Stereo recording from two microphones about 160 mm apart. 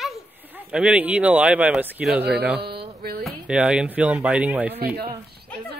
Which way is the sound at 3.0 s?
70° right (ahead or behind).